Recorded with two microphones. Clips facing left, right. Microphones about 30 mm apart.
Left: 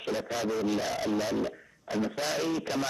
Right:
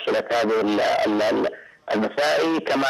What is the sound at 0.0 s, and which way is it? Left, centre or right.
A man's voice, right.